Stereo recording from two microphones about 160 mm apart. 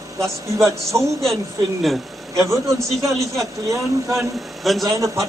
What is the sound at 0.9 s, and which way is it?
Speech, 25° right (ahead or behind).